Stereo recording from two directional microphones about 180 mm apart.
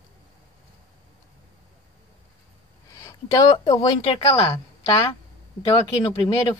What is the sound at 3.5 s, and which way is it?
A woman's voice, 30° left (ahead or behind).